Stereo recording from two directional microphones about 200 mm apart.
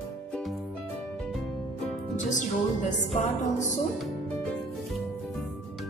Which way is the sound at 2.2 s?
40° left (ahead or behind).